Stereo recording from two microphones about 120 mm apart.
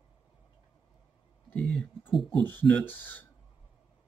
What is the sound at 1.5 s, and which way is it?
Speech, 10° left (ahead or behind).